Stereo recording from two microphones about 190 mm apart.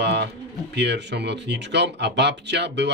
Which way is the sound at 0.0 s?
60° right (ahead or behind).